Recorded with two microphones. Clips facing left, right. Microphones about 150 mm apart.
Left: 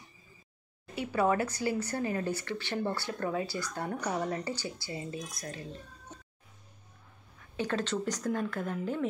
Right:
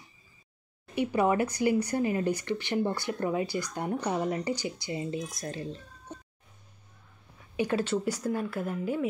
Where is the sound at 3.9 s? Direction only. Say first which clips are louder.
Right 4 dB; 30° right (ahead or behind).